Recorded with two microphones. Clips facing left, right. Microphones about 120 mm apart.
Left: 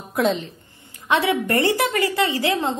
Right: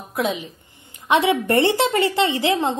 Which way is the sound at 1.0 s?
20° right (ahead or behind).